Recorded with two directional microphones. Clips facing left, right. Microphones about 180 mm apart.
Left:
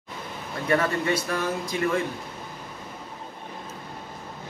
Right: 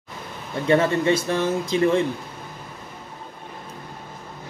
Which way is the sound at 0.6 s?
25° right (ahead or behind).